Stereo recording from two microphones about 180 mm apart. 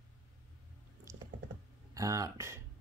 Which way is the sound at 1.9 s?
20° right (ahead or behind).